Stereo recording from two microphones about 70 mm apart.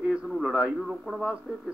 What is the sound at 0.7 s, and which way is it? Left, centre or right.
Speech, centre.